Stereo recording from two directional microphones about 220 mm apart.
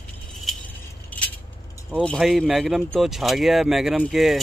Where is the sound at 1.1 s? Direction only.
5° left (ahead or behind).